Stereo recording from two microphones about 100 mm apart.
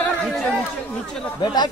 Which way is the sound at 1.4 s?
45° left (ahead or behind).